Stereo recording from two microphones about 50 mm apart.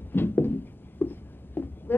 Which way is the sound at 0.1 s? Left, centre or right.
Left.